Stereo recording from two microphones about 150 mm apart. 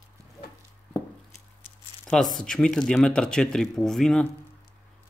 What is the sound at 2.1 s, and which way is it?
Speech, centre (ahead or behind).